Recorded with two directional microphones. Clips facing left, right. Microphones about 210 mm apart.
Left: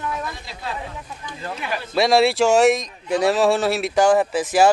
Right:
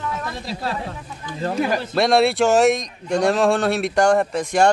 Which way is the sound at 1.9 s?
Centre (ahead or behind).